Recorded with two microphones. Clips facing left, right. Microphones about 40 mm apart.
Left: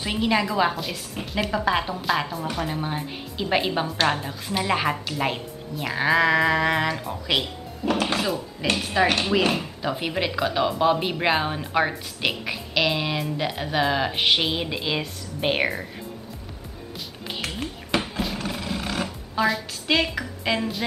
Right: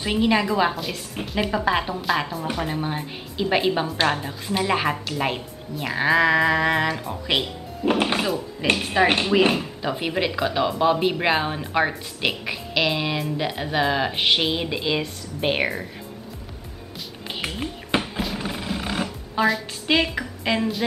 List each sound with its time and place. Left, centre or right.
0.0 s speech: centre; by 9.2 s right
9.5 s speech: centre
17.9 s roaring cats: right
18.4 s music: centre
19.9 s a woman's voice: centre